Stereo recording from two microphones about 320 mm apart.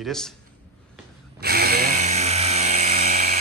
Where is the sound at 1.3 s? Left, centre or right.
Right.